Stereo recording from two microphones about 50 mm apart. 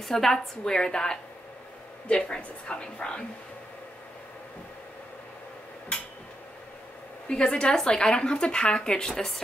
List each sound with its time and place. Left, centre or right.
0.0 s a woman's voice: centre
7.2 s speech: centre